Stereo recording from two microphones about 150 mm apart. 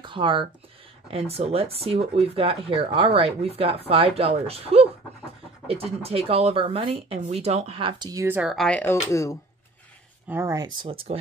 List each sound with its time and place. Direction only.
0.0 s speech: 35° right (ahead or behind)
8.1 s speech: 20° right (ahead or behind)
8.4 s speech: 5° right (ahead or behind)
8.6 s speech: 10° left (ahead or behind)
9.1 s speech: 20° left (ahead or behind)
10.2 s speech: 15° right (ahead or behind); by 11.1 s 40° right (ahead or behind)